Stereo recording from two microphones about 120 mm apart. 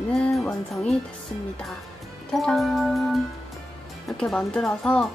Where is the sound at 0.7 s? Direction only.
5° left (ahead or behind).